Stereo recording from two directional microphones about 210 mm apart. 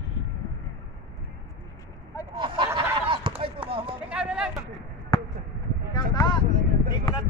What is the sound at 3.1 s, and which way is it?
Basketball bounce, 25° right (ahead or behind).